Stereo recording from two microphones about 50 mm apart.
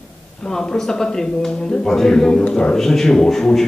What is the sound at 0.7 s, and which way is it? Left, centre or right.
Speech, centre.